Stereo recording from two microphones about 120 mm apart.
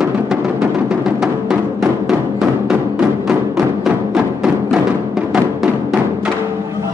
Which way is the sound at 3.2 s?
5° right (ahead or behind).